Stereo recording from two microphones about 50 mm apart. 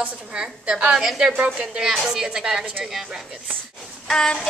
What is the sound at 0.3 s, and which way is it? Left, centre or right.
Speech, right.